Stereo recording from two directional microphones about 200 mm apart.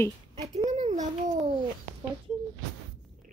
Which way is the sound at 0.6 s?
35° right (ahead or behind).